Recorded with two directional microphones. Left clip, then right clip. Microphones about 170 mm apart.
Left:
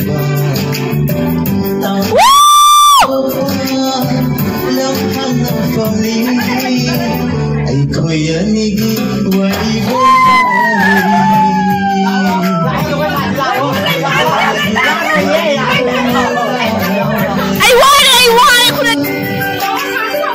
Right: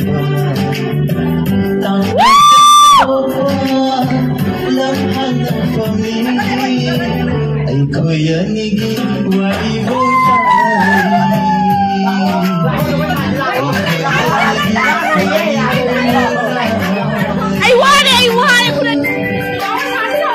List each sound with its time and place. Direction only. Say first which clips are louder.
2.2 s music: right 1 dB; 35° left (ahead or behind)
17.6 s music: left 2 dB; 35° left (ahead or behind)